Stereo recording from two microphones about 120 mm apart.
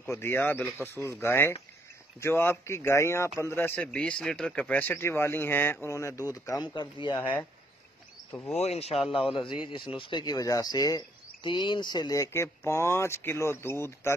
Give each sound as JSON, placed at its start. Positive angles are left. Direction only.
{"t": 0.0, "sound": "speech", "side_deg": 20}
{"t": 6.6, "sound": "speech", "side_deg": 40}
{"t": 7.1, "sound": "speech", "side_deg": 20}
{"t": 8.5, "sound": "speech", "side_deg": 60}
{"t": 9.1, "sound": "a man's voice", "side_deg": 45}